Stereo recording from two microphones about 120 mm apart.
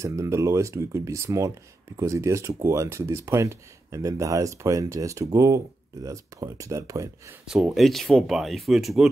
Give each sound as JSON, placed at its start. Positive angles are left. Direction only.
{"t": 0.0, "sound": "speech", "side_deg": -25}
{"t": 7.4, "sound": "speech", "side_deg": -5}